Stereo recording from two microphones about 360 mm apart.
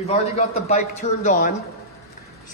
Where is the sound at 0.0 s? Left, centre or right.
Centre.